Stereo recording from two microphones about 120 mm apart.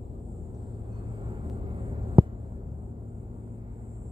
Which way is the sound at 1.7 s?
40° right (ahead or behind).